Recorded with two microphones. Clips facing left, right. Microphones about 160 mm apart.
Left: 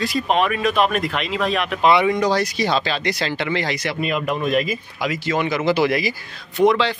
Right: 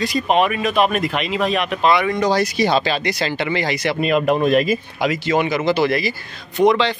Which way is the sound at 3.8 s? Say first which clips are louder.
Right 5 dB; 60° right (ahead or behind).